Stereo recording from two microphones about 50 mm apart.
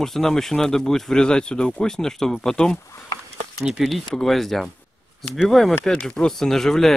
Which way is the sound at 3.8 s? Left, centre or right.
Centre.